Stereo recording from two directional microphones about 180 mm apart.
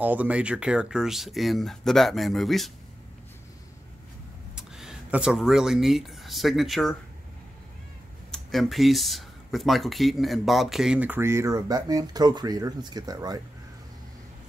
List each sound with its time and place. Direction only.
0.0 s speech: 10° right (ahead or behind)
4.6 s speech: 5° right (ahead or behind)
8.3 s speech: centre (ahead or behind); by 13.4 s 20° right (ahead or behind)